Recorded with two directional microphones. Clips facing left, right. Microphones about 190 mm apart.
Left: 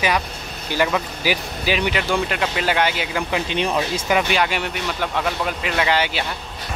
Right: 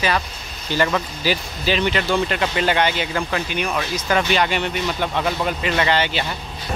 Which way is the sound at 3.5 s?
25° left (ahead or behind).